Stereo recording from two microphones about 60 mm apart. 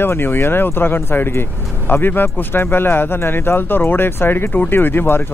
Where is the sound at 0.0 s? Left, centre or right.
Left.